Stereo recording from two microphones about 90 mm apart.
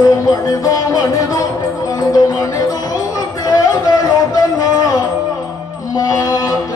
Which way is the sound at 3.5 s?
45° left (ahead or behind).